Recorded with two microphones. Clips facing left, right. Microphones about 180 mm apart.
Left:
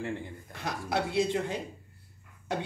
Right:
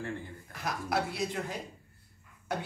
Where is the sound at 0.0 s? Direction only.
25° left (ahead or behind).